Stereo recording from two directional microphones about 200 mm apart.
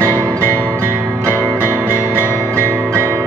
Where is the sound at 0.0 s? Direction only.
15° right (ahead or behind).